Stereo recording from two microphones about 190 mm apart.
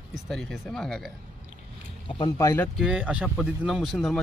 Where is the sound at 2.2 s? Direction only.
15° left (ahead or behind).